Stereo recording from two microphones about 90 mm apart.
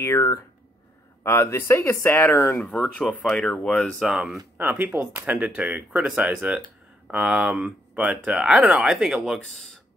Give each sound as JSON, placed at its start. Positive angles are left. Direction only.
{"t": 0.0, "sound": "speech", "side_deg": 30}
{"t": 2.6, "sound": "speech", "side_deg": 5}
{"t": 4.0, "sound": "speech", "side_deg": 0}
{"t": 4.6, "sound": "speech", "side_deg": -20}